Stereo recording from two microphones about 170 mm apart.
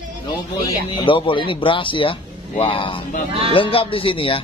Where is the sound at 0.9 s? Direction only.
30° left (ahead or behind).